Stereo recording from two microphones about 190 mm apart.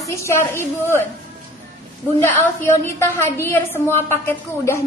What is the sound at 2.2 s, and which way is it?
A woman's voice, 10° left (ahead or behind).